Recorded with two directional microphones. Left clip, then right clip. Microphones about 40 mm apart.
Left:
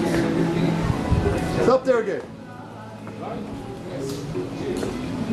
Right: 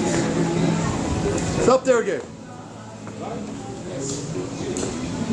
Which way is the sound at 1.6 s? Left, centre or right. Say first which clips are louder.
Right 2 dB; right.